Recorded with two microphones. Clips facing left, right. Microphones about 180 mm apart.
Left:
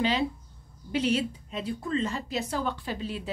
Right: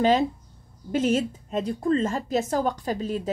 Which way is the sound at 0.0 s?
45° right (ahead or behind).